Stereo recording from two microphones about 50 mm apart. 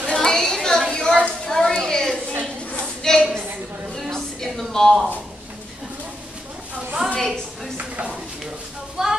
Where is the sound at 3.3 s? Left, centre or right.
Right.